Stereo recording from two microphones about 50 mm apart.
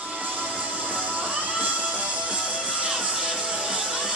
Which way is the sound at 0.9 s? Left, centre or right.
Right.